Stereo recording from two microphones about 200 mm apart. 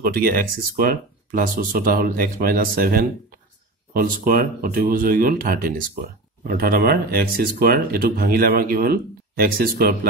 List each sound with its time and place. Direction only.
0.0 s speech: 45° right (ahead or behind)